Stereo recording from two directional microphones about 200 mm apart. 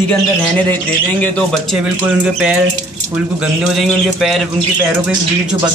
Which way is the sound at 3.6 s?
Centre (ahead or behind).